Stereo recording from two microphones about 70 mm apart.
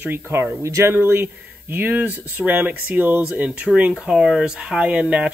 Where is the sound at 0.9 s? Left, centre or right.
Right.